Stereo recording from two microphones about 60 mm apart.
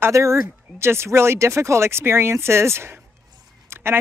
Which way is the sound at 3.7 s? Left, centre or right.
Right.